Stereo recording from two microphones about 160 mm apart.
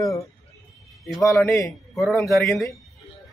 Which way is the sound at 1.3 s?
20° left (ahead or behind).